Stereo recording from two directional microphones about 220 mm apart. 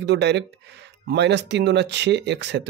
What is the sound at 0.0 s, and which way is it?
Speech, 50° right (ahead or behind).